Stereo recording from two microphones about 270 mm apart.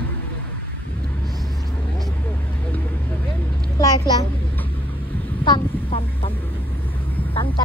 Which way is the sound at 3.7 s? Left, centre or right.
Centre.